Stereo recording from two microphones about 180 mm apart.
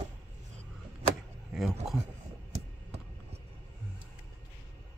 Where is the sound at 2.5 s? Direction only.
35° right (ahead or behind).